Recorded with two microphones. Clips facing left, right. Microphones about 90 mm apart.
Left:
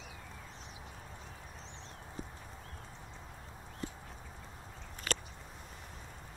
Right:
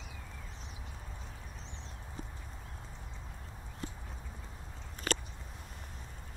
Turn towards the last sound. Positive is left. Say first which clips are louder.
# right 3 dB
turn(degrees=-45)  # may be behind; listen again after turning